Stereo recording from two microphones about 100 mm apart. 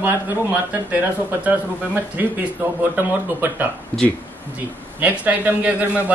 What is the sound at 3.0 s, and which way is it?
Speech, 20° right (ahead or behind).